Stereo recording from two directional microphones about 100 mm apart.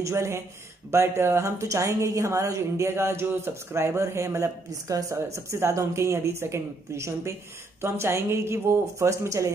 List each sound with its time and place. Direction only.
0.0 s a woman's voice: 25° right (ahead or behind)